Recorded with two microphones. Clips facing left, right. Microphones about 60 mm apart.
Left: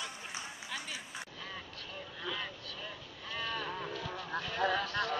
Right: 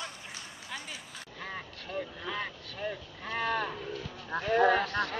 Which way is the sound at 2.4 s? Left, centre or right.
Right.